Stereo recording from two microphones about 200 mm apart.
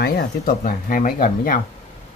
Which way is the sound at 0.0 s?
45° left (ahead or behind).